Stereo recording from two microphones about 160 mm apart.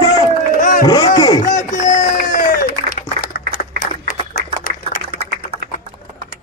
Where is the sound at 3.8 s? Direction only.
55° left (ahead or behind).